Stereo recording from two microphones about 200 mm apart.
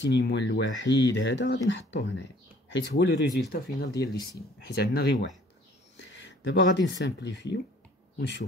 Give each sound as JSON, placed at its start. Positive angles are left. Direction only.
{"t": 0.0, "sound": "speech", "side_deg": 65}